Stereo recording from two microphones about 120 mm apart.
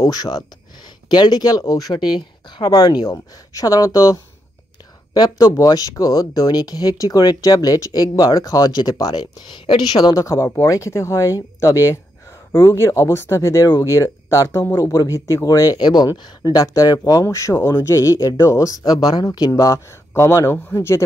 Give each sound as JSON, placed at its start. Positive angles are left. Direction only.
{"t": 0.0, "sound": "speech", "side_deg": 30}